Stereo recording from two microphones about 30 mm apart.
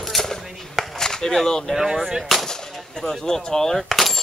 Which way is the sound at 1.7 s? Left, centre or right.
Centre.